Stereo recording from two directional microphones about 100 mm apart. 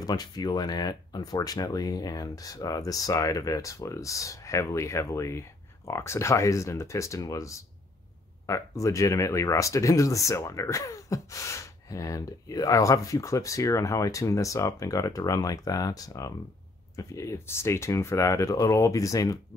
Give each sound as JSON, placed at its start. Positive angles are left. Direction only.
{"t": 0.0, "sound": "speech", "side_deg": 40}